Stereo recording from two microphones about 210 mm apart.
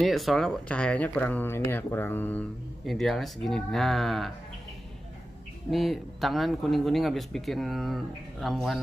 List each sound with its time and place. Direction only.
0.0 s speech: centre (ahead or behind)
5.7 s speech: centre (ahead or behind)